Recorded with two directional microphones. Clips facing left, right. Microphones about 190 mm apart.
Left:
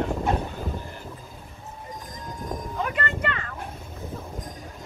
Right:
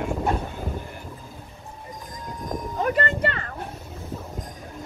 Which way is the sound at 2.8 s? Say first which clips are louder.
Right 6 dB; 35° right (ahead or behind).